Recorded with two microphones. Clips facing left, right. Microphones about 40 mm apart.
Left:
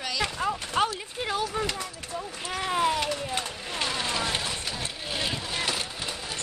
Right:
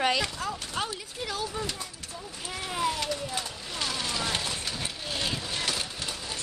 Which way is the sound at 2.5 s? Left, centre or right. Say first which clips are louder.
Left 5 dB; left.